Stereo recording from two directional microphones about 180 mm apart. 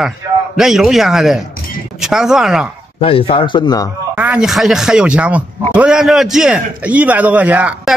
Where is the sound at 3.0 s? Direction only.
30° left (ahead or behind).